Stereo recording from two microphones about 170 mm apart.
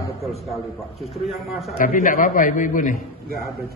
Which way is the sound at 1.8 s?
50° left (ahead or behind).